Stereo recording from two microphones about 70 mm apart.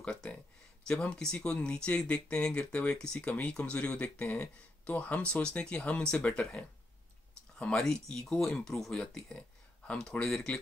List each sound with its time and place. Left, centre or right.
0.0 s speech: centre
7.5 s speech: centre